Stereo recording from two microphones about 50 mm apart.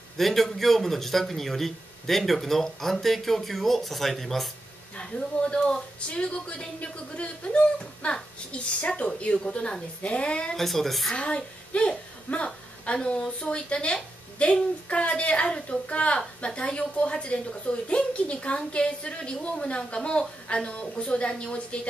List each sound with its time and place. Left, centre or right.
0.2 s a man's voice: centre
5.5 s speech: centre
10.5 s a man's voice: centre
11.1 s a woman's voice: left